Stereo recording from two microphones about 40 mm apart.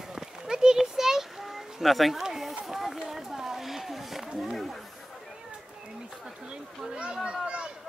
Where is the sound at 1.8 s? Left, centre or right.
Centre.